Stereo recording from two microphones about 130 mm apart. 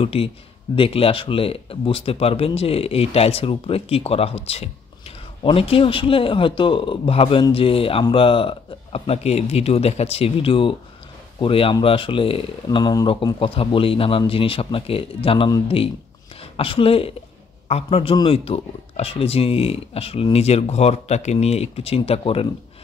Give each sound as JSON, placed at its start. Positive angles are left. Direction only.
{"t": 0.0, "sound": "speech", "side_deg": 45}